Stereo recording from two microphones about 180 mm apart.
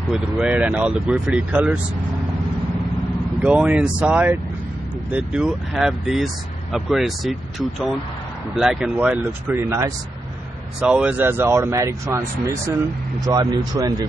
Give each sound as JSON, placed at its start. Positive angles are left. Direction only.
{"t": 0.1, "sound": "speech", "side_deg": -5}
{"t": 3.4, "sound": "speech", "side_deg": -5}
{"t": 9.5, "sound": "speech", "side_deg": -15}